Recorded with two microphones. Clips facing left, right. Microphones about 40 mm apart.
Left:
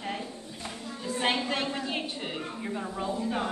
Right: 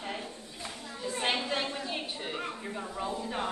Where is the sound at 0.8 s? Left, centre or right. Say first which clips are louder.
Left 3 dB; centre.